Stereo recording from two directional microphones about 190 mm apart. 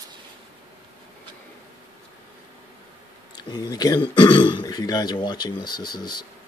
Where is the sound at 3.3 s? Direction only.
20° left (ahead or behind).